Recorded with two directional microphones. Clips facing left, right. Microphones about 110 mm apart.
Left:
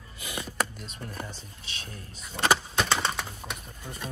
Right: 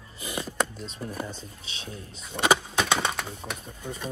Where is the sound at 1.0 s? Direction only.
15° right (ahead or behind).